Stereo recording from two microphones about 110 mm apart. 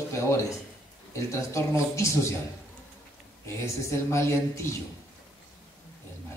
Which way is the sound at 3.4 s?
25° left (ahead or behind).